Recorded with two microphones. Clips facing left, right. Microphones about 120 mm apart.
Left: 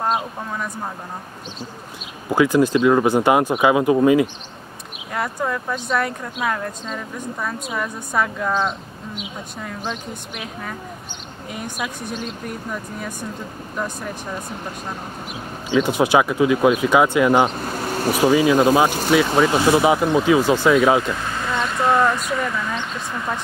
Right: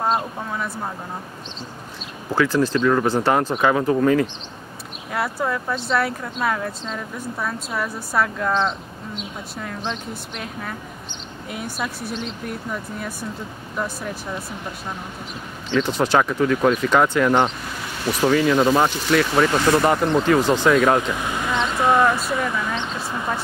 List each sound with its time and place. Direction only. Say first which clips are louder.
0.0 s speech: even; centre (ahead or behind)
2.3 s speech: left 3 dB; 15° left (ahead or behind)
5.1 s speech: even; centre (ahead or behind)
13.7 s speech: even; centre (ahead or behind)
15.7 s speech: left 2 dB; 10° left (ahead or behind)
17.6 s bee: left 7 dB; 45° left (ahead or behind)
18.2 s speech: left 2 dB; 5° left (ahead or behind)
18.9 s speech: left 3 dB; 50° left (ahead or behind)
19.3 s speech: left 1 dB; 10° left (ahead or behind)
21.0 s vehicle: even; 10° right (ahead or behind)
21.7 s speech: even; 5° right (ahead or behind)